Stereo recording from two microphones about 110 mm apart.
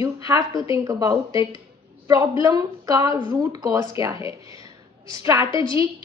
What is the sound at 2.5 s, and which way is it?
A woman's voice, 35° right (ahead or behind).